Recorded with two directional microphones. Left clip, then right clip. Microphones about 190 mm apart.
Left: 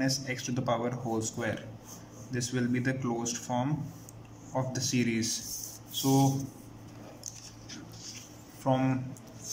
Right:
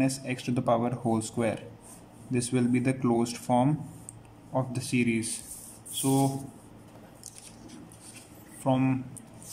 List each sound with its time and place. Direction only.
0.3 s speech: 15° right (ahead or behind)
4.6 s speech: 10° right (ahead or behind)
8.6 s speech: 10° right (ahead or behind)